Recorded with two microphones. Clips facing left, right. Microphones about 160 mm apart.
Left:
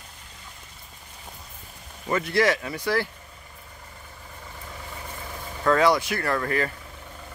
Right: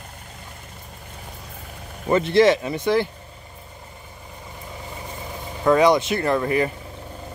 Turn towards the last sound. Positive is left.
turn(degrees=-20)  # may be behind; listen again after turning